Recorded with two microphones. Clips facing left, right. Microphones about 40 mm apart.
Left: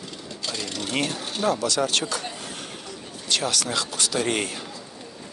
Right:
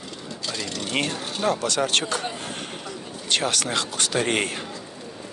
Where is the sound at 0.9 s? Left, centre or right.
Centre.